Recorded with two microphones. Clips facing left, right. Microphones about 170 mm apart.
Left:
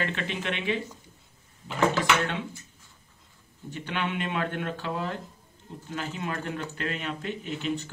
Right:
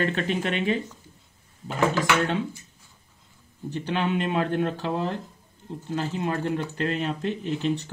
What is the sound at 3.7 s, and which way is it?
Speech, 35° right (ahead or behind).